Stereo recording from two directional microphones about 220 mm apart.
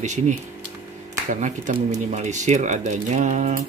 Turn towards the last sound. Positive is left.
turn(degrees=-35)  # may be behind; listen again after turning